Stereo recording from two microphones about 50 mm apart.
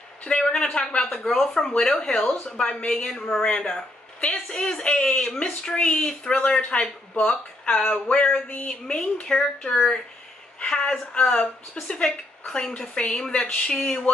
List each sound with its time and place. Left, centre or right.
0.2 s a woman's voice: centre